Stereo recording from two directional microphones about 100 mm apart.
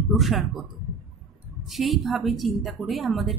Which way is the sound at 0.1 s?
Centre (ahead or behind).